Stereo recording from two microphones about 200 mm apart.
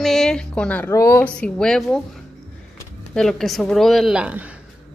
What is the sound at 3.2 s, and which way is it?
A woman's voice, centre (ahead or behind).